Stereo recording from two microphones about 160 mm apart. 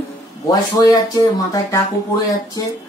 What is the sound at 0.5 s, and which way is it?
Speech, 25° left (ahead or behind).